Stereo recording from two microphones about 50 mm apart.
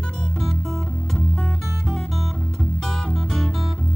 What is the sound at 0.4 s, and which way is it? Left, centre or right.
Music, centre.